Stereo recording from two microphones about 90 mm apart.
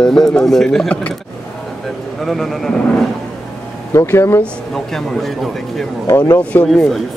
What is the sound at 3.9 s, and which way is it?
Speech, 30° left (ahead or behind).